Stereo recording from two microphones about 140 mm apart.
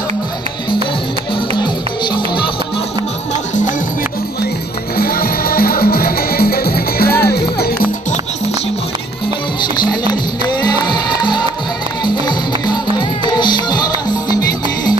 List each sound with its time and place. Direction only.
4.9 s music: 90° left
9.6 s music: 30° left (ahead or behind)